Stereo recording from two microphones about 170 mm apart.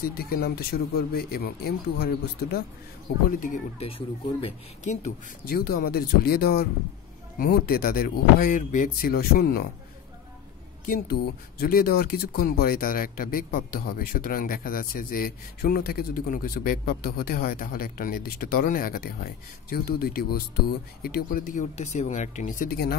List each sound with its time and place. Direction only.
0.1 s speech: 60° left (ahead or behind)
3.3 s speech: 50° left (ahead or behind)
5.5 s speech: 60° left (ahead or behind)
10.9 s speech: 60° left (ahead or behind)